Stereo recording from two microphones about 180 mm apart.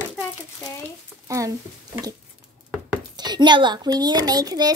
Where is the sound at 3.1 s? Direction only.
25° right (ahead or behind).